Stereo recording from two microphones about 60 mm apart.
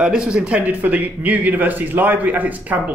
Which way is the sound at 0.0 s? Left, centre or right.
Centre.